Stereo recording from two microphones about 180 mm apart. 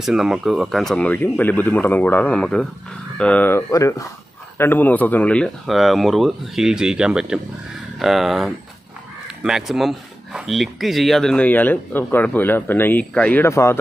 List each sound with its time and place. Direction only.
0.0 s speech: centre (ahead or behind); by 13.7 s 15° left (ahead or behind)